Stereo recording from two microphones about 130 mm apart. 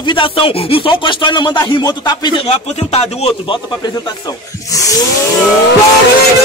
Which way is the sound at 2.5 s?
50° left (ahead or behind).